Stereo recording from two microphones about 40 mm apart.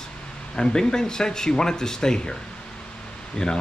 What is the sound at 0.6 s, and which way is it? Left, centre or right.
Speech, left.